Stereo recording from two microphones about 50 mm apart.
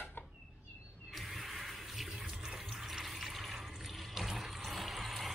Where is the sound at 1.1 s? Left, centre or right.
Centre.